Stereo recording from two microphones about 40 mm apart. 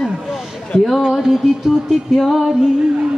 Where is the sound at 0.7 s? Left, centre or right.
Centre.